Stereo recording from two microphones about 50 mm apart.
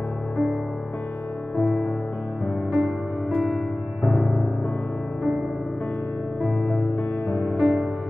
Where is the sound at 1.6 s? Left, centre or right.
Centre.